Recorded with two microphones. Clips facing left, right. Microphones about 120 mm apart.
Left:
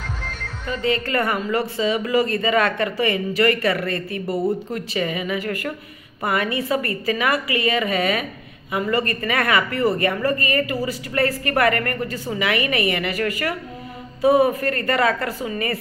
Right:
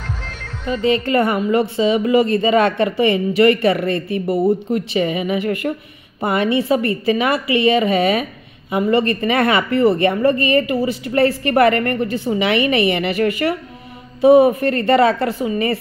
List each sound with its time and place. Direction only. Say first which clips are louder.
0.0 s music: right 2 dB; centre (ahead or behind)
0.7 s a woman's voice: right 6 dB; 20° right (ahead or behind)